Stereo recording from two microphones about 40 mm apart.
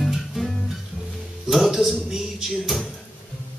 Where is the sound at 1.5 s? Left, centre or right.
Centre.